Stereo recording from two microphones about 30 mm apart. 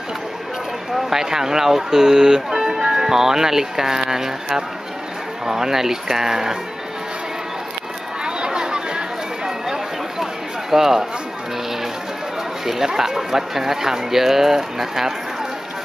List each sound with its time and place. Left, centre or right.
0.9 s speech: centre
8.2 s chatter: right
10.7 s speech: centre
12.6 s speech: centre